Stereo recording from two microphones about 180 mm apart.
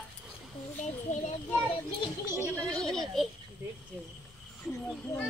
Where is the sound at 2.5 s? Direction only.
5° left (ahead or behind).